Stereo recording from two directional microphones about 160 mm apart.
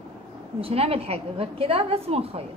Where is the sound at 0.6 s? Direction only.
35° right (ahead or behind).